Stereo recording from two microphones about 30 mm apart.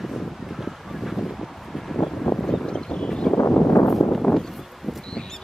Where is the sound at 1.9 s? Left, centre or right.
Centre.